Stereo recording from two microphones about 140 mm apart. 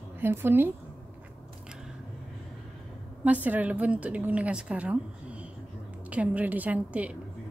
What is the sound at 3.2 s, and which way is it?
A woman's voice, 10° right (ahead or behind).